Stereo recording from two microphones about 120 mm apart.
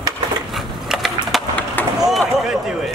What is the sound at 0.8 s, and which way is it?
Skateboard, 5° right (ahead or behind).